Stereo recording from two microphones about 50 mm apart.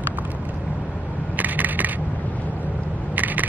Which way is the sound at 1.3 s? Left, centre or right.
Right.